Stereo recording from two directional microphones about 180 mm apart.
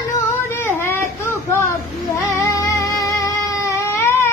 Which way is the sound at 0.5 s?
10° left (ahead or behind).